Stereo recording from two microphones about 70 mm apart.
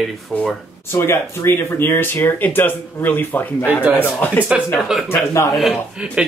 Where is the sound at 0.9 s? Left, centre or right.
Left.